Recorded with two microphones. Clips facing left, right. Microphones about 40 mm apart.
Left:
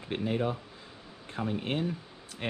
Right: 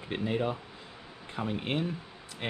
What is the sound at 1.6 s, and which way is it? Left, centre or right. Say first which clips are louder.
Speech: right 1 dB; right.